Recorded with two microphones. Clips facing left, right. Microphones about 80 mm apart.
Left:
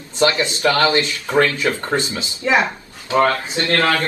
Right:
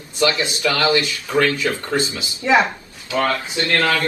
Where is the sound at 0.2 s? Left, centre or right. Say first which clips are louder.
Left 2 dB; left.